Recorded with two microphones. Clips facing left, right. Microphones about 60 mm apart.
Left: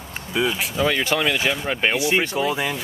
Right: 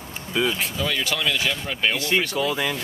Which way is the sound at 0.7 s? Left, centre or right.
Left.